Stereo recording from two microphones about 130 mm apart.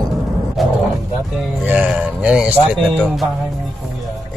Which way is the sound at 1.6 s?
10° right (ahead or behind).